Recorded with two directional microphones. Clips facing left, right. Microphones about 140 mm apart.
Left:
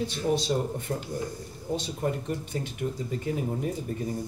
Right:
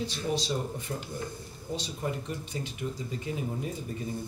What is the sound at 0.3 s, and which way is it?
Speech, 55° left (ahead or behind).